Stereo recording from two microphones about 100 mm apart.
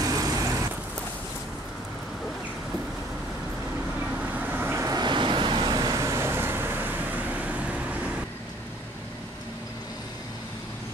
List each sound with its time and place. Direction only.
0.0 s vehicle: 35° right (ahead or behind)
4.4 s vehicle: 20° right (ahead or behind)
4.8 s vehicle: 45° right (ahead or behind); by 7.8 s 15° right (ahead or behind)